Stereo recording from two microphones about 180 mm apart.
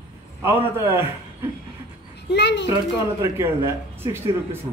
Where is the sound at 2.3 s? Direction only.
70° left (ahead or behind).